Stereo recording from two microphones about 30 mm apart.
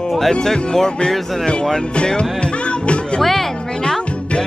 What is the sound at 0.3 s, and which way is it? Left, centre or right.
Speech, centre.